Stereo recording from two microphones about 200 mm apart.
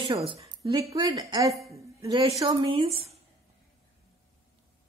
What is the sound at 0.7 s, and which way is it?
Speech, 25° right (ahead or behind).